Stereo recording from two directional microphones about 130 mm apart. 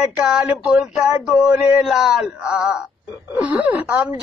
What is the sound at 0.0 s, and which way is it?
Speech, 5° right (ahead or behind).